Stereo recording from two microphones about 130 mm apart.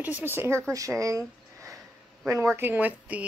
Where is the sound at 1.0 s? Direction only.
25° right (ahead or behind).